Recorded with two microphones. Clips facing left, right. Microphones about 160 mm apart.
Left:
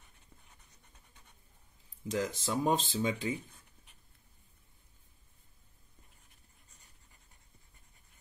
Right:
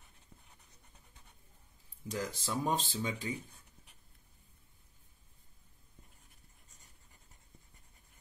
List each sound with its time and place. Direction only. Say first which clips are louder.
2.0 s speech: left 4 dB; 20° left (ahead or behind)